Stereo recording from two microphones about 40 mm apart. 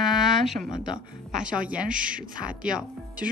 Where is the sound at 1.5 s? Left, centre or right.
Right.